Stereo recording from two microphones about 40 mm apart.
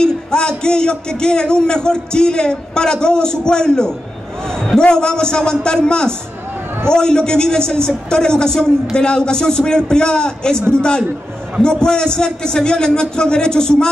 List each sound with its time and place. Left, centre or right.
0.0 s a man's voice: centre